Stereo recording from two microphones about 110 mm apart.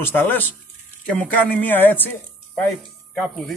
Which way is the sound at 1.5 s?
15° left (ahead or behind).